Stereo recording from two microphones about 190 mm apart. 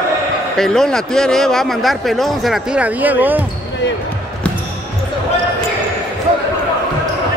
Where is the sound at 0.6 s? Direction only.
5° left (ahead or behind).